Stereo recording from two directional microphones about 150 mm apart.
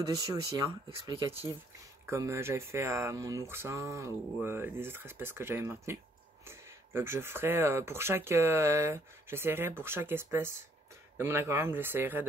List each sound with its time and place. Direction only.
0.0 s speech: 25° right (ahead or behind)
2.0 s speech: 20° right (ahead or behind)